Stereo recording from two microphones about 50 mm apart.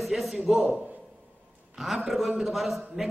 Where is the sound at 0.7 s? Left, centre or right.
Right.